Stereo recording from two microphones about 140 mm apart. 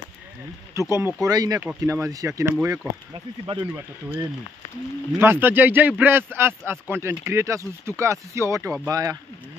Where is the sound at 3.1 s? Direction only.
35° right (ahead or behind).